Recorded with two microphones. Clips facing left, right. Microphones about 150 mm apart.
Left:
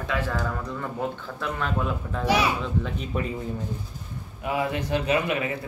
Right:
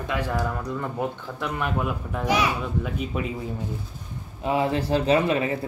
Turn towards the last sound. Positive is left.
turn(degrees=-30)  # may be behind; listen again after turning